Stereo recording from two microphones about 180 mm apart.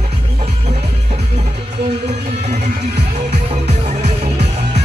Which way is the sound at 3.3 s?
40° right (ahead or behind).